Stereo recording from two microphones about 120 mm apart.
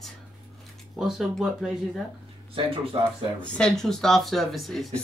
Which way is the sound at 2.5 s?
45° right (ahead or behind).